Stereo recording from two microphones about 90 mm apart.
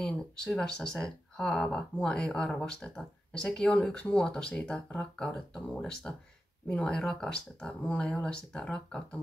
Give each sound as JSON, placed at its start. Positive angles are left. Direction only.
{"t": 0.0, "sound": "speech", "side_deg": 10}